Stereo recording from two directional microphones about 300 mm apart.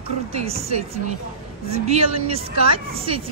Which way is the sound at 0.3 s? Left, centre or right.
Right.